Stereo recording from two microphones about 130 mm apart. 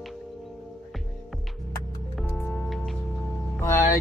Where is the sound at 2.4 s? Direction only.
5° left (ahead or behind).